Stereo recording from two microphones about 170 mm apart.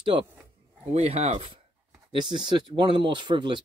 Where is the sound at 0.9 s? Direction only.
40° right (ahead or behind).